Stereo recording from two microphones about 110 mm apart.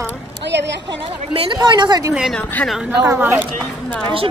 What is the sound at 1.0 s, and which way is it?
A woman's voice, 45° right (ahead or behind).